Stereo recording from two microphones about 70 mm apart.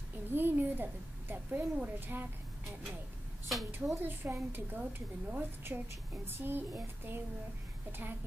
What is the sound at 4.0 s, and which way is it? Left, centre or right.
Female singing, right.